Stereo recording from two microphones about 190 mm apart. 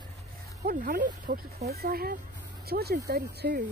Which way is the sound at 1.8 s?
50° right (ahead or behind).